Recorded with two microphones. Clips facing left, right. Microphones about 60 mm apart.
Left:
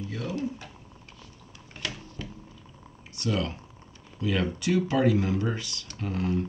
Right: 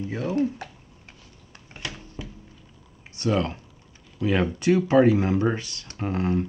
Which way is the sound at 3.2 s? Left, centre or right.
Right.